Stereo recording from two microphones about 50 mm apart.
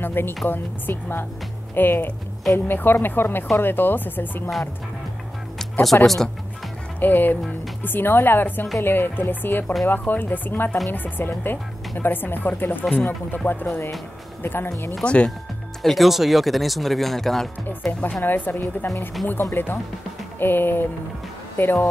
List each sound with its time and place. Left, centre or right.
0.0 s speech: left
5.6 s music: centre
6.0 s speech: centre
7.0 s speech: left
15.0 s speech: left
15.8 s speech: centre
18.2 s speech: left